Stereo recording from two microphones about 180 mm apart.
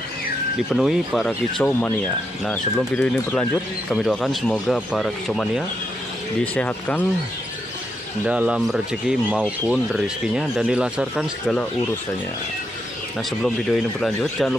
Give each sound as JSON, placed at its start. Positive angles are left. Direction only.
{"t": 0.7, "sound": "speech", "side_deg": 0}
{"t": 8.3, "sound": "speech", "side_deg": -5}
{"t": 13.4, "sound": "speech", "side_deg": 0}